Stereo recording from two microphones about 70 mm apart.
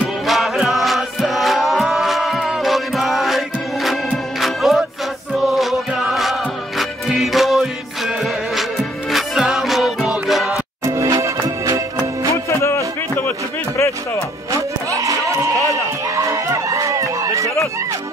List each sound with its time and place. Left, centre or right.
0.3 s chant: centre
4.4 s music: centre
5.3 s chant: centre
6.8 s music: centre
10.9 s music: right
12.4 s music: left
14.5 s a sound: right